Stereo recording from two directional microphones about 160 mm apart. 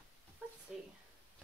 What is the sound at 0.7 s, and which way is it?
Speech, 5° right (ahead or behind).